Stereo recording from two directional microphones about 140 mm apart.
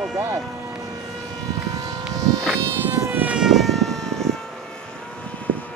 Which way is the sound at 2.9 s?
15° right (ahead or behind).